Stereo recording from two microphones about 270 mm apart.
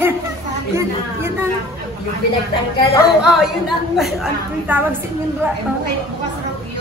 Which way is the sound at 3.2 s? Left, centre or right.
Centre.